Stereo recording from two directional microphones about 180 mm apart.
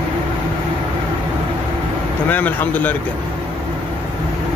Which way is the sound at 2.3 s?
10° left (ahead or behind).